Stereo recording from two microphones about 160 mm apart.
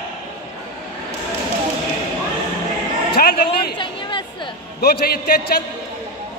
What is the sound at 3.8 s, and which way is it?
Chatter, 30° left (ahead or behind).